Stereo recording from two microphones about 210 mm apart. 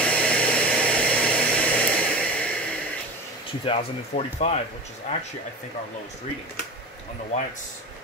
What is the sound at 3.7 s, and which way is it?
Speech, 30° left (ahead or behind).